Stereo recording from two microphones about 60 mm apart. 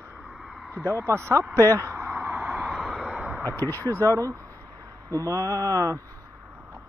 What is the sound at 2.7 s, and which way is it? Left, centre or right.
Vehicle, centre.